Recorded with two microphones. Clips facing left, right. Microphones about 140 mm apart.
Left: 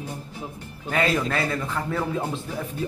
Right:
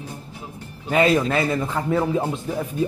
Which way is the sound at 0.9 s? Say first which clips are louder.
Right 5 dB; 20° right (ahead or behind).